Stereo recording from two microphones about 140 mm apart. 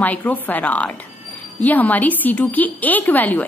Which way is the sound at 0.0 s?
10° left (ahead or behind).